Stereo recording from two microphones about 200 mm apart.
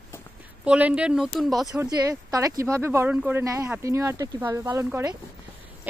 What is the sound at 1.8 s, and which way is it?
Speech, 15° right (ahead or behind).